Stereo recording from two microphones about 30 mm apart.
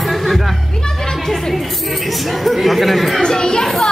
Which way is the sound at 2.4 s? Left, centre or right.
Centre.